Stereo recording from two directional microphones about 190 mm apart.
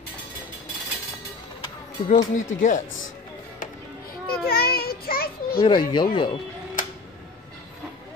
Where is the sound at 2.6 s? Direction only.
45° left (ahead or behind).